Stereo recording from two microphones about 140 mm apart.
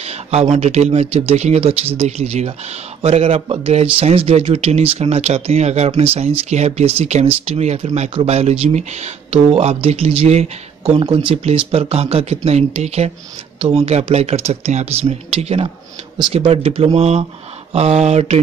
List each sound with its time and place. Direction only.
0.0 s speech: 50° right (ahead or behind)